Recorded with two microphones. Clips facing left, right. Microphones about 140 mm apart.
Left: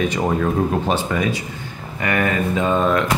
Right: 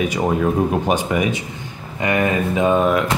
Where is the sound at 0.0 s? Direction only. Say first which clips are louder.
Right 1 dB; 10° right (ahead or behind).